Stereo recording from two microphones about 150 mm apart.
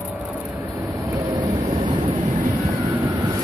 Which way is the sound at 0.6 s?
20° right (ahead or behind).